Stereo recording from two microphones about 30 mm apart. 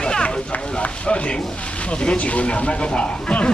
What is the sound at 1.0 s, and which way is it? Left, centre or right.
Speech, left.